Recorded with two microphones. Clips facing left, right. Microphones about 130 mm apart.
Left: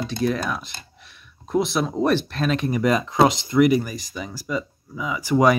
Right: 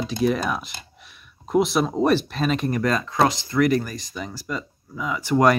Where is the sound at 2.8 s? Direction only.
15° left (ahead or behind).